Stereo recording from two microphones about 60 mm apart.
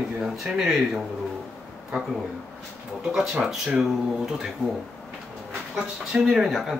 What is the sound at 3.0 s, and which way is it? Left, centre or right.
Speech, centre.